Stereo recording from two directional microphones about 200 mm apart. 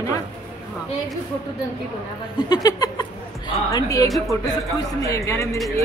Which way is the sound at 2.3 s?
20° left (ahead or behind).